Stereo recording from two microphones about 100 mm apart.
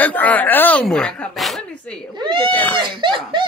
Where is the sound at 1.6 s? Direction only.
10° left (ahead or behind).